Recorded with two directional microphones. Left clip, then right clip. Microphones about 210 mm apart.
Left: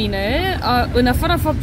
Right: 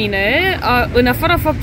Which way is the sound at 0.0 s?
Centre (ahead or behind).